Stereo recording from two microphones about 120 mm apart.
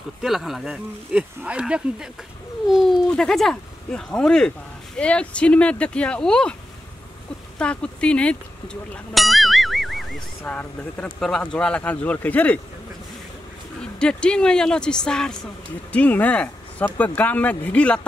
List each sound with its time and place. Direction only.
0.2 s speech: centre (ahead or behind)
7.5 s speech: 10° left (ahead or behind)
9.1 s music: centre (ahead or behind)
10.4 s speech: 10° left (ahead or behind)
13.7 s speech: 5° left (ahead or behind)